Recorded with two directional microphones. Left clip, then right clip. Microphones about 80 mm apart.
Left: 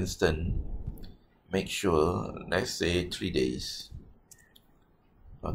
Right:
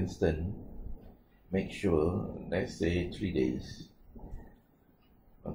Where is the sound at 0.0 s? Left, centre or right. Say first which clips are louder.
Left 3 dB; left.